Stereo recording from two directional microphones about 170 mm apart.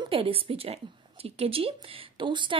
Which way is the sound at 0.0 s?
35° right (ahead or behind).